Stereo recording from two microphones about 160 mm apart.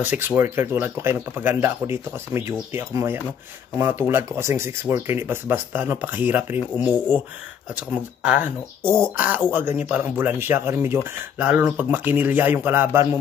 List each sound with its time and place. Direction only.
0.0 s speech: 10° right (ahead or behind)